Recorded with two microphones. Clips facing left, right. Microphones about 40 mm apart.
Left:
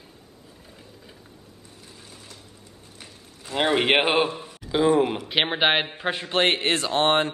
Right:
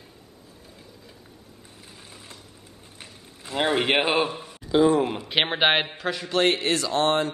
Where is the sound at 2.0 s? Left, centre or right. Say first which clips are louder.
Right 1 dB; right.